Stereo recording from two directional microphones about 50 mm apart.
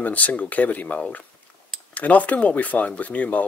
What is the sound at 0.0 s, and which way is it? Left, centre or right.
Speech, left.